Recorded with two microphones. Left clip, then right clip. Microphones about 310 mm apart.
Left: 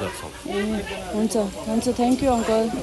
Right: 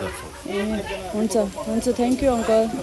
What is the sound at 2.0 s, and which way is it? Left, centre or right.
Speech, centre.